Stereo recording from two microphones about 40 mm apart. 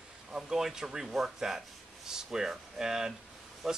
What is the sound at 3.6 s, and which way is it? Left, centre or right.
Speech, centre.